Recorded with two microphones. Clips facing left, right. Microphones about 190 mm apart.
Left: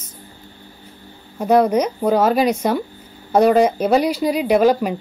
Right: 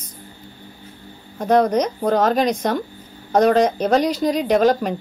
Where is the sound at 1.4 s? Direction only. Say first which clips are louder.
Left 1 dB; 10° left (ahead or behind).